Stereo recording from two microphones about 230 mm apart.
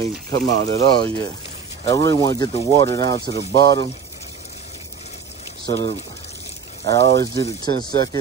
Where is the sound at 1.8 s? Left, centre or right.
Centre.